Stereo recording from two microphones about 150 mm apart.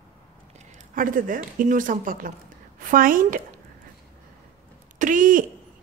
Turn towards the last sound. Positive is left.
turn(degrees=-65)  # may be behind; listen again after turning